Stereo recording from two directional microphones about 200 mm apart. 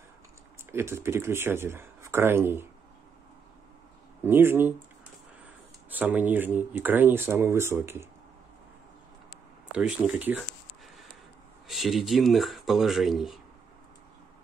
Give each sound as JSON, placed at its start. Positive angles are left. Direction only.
{"t": 0.7, "sound": "speech", "side_deg": -10}
{"t": 4.2, "sound": "speech", "side_deg": -10}
{"t": 5.9, "sound": "speech", "side_deg": -10}
{"t": 9.7, "sound": "speech", "side_deg": -5}
{"t": 11.6, "sound": "speech", "side_deg": 0}